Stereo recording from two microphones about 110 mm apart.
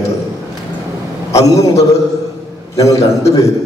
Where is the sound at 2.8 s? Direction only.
30° left (ahead or behind).